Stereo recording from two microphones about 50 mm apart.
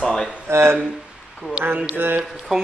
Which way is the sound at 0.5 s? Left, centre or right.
Right.